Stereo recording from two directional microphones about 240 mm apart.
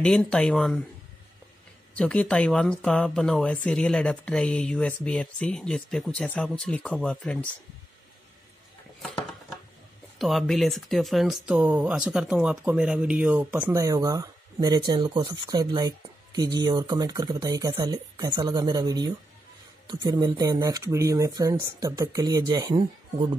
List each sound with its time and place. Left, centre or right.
0.0 s speech: centre
2.0 s speech: centre
10.1 s speech: centre